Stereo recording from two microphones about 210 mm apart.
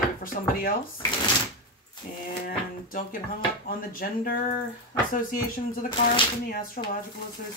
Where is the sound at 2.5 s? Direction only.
40° left (ahead or behind).